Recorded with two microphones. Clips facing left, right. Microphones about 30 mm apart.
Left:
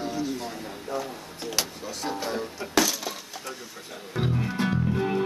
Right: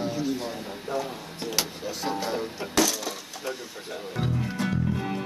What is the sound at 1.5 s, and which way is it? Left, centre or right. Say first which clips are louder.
Speech: even; centre.